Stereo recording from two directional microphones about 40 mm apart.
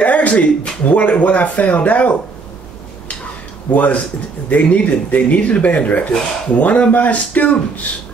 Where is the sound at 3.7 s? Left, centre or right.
Left.